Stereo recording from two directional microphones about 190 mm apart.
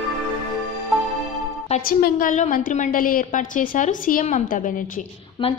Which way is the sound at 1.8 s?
50° left (ahead or behind).